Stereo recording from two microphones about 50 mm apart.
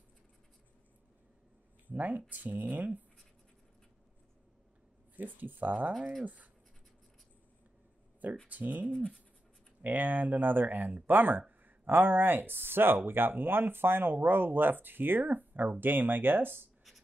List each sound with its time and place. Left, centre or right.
1.9 s speech: right
5.1 s speech: right
8.5 s speech: right